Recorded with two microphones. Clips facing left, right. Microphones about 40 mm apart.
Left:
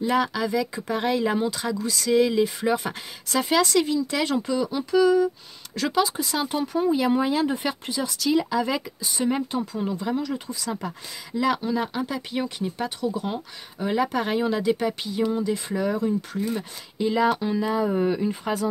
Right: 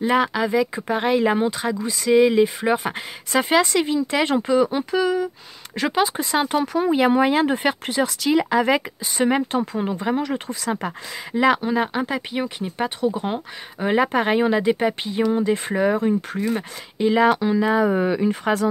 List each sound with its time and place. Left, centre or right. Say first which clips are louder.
0.0 s speech: right 4 dB; right
5.0 s speech: left 6 dB; centre
5.8 s speech: right 2 dB; right
6.5 s speech: even; right
9.3 s speech: right 5 dB; right
9.8 s speech: right 4 dB; right
12.4 s speech: right 2 dB; centre
12.7 s speech: right 8 dB; right
15.3 s speech: right 5 dB; right
17.4 s speech: right 5 dB; right
17.6 s speech: right 3 dB; right